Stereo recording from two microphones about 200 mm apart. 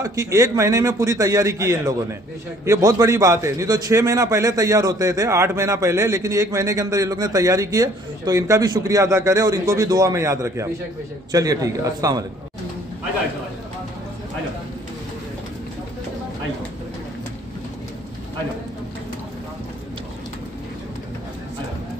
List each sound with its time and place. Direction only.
0.0 s a man's voice: 15° right (ahead or behind)